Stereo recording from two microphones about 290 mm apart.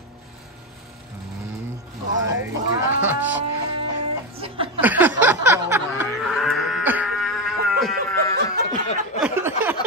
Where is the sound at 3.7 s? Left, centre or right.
Centre.